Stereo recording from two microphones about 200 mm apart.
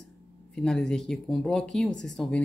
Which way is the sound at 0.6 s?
5° left (ahead or behind).